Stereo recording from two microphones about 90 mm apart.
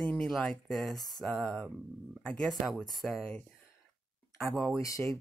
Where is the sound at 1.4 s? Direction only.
10° left (ahead or behind).